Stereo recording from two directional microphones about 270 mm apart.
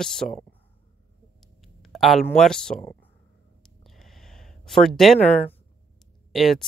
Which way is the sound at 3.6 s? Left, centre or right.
Centre.